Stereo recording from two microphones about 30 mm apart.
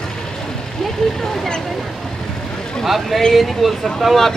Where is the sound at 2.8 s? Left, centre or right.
Centre.